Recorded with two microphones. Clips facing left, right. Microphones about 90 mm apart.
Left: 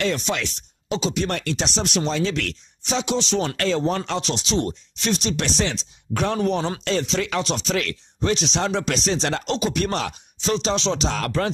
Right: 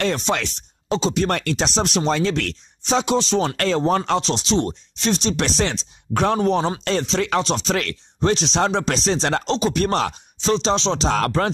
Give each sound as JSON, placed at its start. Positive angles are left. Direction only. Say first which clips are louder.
{"t": 0.0, "sound": "speech", "louder": "right 2 dB", "side_deg": -40}
{"t": 1.3, "sound": "speech", "louder": "right 4 dB", "side_deg": -50}
{"t": 11.1, "sound": "speech", "louder": "right 4 dB", "side_deg": -45}